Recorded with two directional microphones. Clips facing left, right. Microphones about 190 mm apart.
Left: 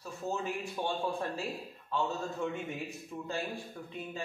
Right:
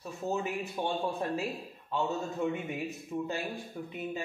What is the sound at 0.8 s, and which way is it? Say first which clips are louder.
Speech: right 2 dB; 15° right (ahead or behind).